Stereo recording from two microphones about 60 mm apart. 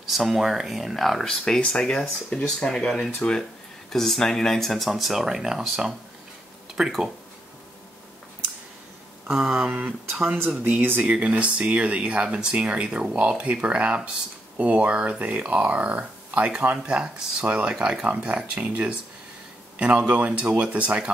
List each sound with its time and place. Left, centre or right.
0.1 s speech: centre
9.3 s speech: centre